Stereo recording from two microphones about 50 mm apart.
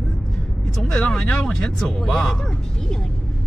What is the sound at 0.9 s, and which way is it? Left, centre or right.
Speech, centre.